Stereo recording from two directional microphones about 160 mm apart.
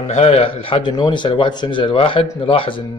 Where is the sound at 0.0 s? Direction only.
40° left (ahead or behind).